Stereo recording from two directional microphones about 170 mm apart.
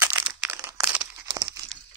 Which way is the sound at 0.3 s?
10° right (ahead or behind).